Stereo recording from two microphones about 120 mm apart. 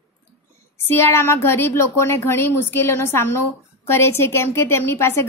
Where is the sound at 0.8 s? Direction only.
20° left (ahead or behind).